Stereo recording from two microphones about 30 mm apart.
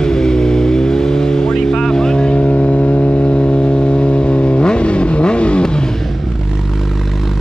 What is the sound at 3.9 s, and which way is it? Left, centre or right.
Vehicle, left.